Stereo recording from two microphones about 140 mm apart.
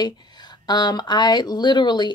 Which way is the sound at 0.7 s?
30° left (ahead or behind).